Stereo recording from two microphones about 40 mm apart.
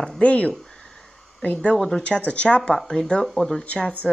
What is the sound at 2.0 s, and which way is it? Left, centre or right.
Speech, left.